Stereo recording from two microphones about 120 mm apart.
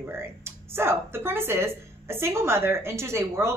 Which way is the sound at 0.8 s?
20° right (ahead or behind).